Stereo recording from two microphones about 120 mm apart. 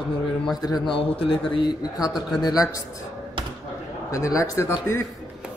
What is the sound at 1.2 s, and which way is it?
A man's voice, 45° left (ahead or behind).